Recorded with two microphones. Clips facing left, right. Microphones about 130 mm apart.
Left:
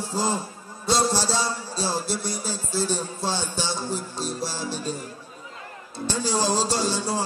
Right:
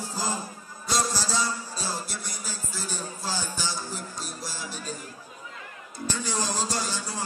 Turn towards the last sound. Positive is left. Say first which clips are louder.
# left 7 dB
turn(degrees=30)  # may be behind; listen again after turning